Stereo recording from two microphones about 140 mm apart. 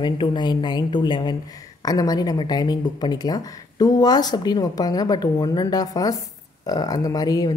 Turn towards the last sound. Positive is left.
turn(degrees=25)  # may be behind; listen again after turning